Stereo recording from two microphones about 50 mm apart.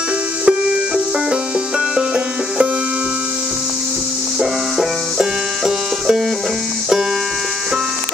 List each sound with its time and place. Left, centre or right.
0.5 s music: centre
2.0 s banjo: right
4.4 s music: centre